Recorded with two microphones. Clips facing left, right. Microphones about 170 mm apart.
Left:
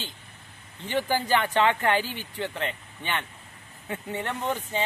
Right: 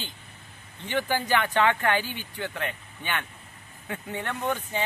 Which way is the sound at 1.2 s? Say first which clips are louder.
Even; 30° left (ahead or behind).